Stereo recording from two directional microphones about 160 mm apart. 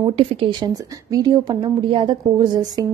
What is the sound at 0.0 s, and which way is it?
A woman's voice, 35° right (ahead or behind).